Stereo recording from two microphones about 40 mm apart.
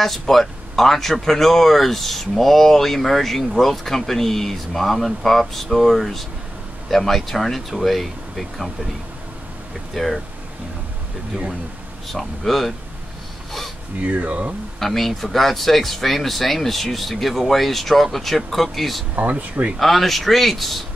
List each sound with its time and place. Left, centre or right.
0.0 s speech: centre
9.9 s speech: centre
12.1 s speech: centre
14.0 s speech: right
14.8 s speech: centre
19.1 s speech: right
19.8 s speech: centre